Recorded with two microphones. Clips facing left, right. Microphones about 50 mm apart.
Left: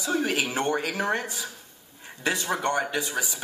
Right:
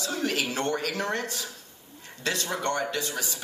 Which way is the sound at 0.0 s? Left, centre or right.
Centre.